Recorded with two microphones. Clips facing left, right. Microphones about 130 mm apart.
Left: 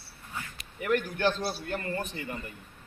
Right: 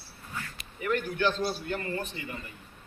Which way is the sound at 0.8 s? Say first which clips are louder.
Left 1 dB; 55° left (ahead or behind).